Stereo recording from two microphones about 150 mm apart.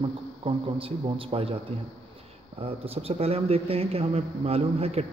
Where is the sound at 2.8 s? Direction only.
40° right (ahead or behind).